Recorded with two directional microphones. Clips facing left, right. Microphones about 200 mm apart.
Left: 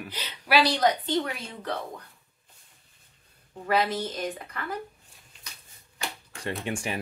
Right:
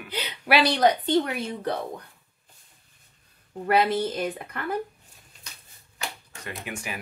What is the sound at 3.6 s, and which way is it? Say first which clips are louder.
A woman's voice: right 4 dB; 60° right (ahead or behind).